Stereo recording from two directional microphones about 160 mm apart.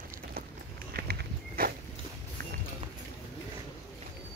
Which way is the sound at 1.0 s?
80° right.